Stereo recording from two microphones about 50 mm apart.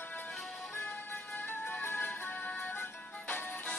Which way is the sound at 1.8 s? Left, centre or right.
Left.